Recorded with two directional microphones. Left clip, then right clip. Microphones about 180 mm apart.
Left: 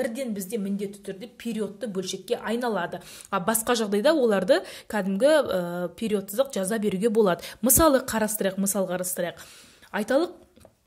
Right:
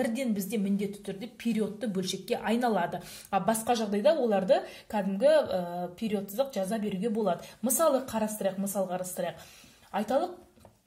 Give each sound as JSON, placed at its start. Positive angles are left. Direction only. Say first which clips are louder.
{"t": 0.0, "sound": "a woman's voice", "louder": "left 2 dB", "side_deg": 20}
{"t": 3.3, "sound": "a woman's voice", "louder": "left 2 dB", "side_deg": 30}